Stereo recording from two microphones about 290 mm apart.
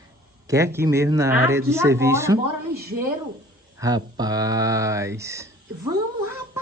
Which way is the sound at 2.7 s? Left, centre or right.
Right.